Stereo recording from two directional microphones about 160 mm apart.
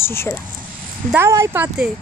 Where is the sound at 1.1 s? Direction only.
15° right (ahead or behind).